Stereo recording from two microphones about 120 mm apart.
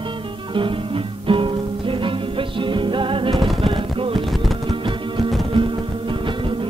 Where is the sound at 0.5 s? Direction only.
45° right (ahead or behind).